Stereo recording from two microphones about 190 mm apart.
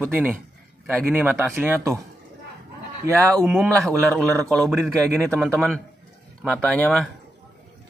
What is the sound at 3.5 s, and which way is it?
A man's voice, 5° right (ahead or behind).